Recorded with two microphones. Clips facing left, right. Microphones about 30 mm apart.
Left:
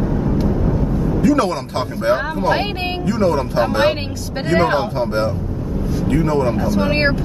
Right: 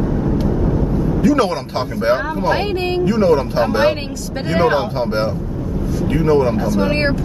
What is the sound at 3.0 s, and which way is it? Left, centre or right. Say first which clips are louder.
Speech: right 3 dB; centre.